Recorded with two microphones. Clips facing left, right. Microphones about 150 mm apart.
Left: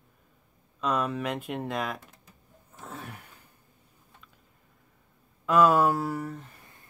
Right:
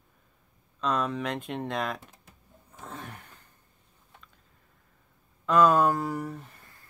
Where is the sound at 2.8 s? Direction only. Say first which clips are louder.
Even; 5° left (ahead or behind).